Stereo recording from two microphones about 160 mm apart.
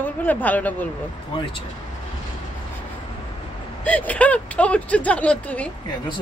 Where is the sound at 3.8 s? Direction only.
10° left (ahead or behind).